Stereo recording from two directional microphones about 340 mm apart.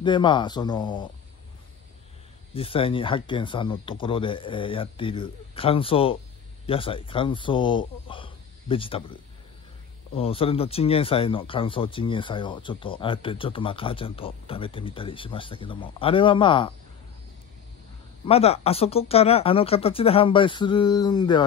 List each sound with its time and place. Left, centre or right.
0.0 s speech: centre
2.5 s speech: centre
10.1 s speech: centre
18.2 s speech: centre